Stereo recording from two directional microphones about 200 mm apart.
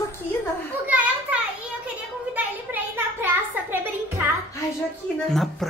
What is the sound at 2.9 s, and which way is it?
Music, 10° right (ahead or behind).